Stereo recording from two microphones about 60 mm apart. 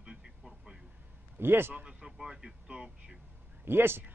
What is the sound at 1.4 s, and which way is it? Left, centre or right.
Speech, right.